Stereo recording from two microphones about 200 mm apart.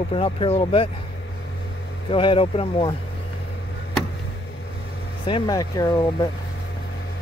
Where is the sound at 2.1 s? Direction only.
25° left (ahead or behind).